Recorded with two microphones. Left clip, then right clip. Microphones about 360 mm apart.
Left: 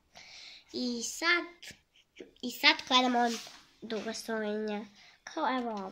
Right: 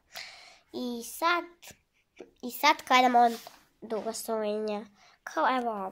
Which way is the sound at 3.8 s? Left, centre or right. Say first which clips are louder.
Right 4 dB; right.